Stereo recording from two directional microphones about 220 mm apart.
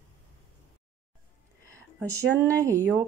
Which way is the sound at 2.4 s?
15° right (ahead or behind).